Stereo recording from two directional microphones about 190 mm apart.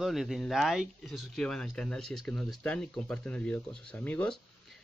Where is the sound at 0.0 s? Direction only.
Centre (ahead or behind).